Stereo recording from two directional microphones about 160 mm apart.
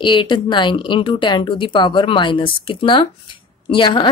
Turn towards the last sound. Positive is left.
turn(degrees=30)  # may be behind; listen again after turning